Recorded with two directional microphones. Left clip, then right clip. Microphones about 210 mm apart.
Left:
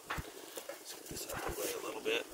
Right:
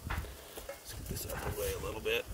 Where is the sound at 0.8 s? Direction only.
30° right (ahead or behind).